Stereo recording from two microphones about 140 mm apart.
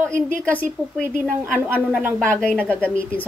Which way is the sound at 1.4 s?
10° right (ahead or behind).